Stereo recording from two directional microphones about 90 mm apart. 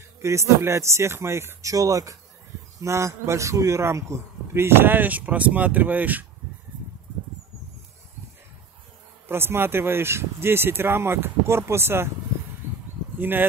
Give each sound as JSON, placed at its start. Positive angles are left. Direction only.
{"t": 0.2, "sound": "a man's voice", "side_deg": -30}
{"t": 9.3, "sound": "a man's voice", "side_deg": -25}
{"t": 13.2, "sound": "a man's voice", "side_deg": -20}